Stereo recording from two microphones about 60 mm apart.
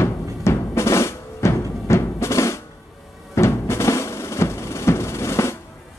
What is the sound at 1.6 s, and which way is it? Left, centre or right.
Drum, left.